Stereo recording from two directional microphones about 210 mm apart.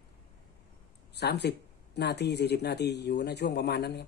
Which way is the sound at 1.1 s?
50° left (ahead or behind).